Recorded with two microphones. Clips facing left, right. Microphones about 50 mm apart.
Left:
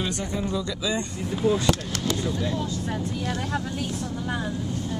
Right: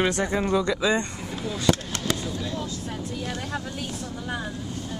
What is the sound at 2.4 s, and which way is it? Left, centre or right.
Vehicle, centre.